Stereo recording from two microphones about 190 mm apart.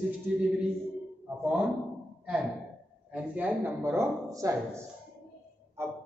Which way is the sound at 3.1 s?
10° right (ahead or behind).